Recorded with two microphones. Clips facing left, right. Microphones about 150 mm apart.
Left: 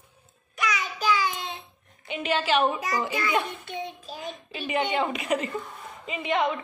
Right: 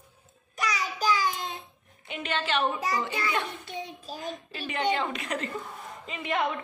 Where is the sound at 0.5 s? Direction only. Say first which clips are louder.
Left 1 dB; 35° right (ahead or behind).